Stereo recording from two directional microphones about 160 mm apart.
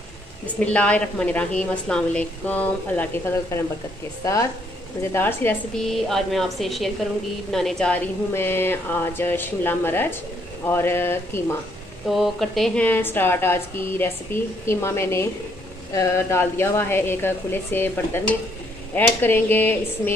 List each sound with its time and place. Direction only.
0.7 s speech: 10° left (ahead or behind)
5.9 s a woman's voice: centre (ahead or behind)
12.1 s speech: centre (ahead or behind)